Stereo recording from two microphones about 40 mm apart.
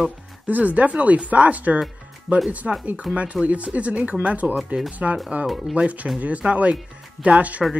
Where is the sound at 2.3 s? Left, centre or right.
Centre.